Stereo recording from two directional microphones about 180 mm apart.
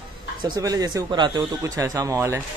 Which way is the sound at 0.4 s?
20° right (ahead or behind).